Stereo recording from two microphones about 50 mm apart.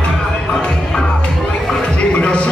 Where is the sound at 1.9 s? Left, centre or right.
Left.